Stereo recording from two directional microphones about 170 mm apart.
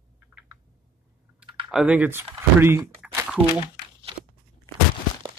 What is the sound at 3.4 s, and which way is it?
Speech, 5° right (ahead or behind).